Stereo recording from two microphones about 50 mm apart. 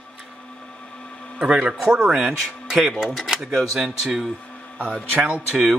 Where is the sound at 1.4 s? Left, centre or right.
Centre.